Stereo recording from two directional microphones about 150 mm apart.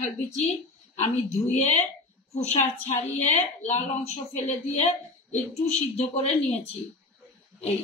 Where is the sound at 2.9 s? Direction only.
50° left (ahead or behind).